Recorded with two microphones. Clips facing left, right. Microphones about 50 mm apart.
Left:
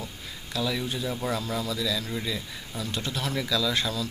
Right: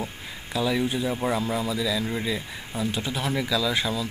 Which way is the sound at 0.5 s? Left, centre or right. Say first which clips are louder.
Right 5 dB; centre.